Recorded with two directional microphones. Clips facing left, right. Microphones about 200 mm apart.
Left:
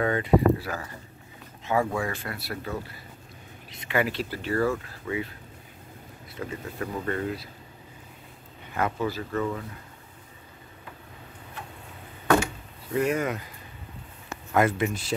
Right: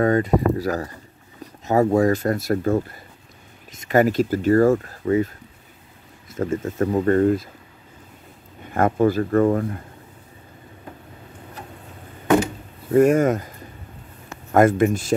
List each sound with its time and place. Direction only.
0.0 s speech: 40° right (ahead or behind)
6.3 s speech: 45° right (ahead or behind)
8.7 s speech: 50° right (ahead or behind)
12.9 s speech: 45° right (ahead or behind)
14.5 s speech: 45° right (ahead or behind)